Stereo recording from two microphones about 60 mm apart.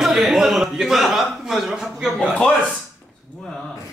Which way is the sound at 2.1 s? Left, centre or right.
Centre.